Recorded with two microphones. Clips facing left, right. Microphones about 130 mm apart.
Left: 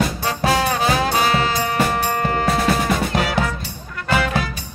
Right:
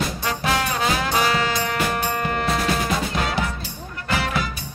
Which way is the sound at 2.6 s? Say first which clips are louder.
Left 4 dB; 70° left (ahead or behind).